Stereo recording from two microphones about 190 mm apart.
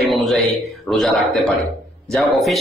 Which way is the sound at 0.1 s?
Centre (ahead or behind).